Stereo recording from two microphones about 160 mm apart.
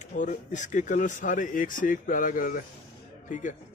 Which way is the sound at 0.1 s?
50° left (ahead or behind).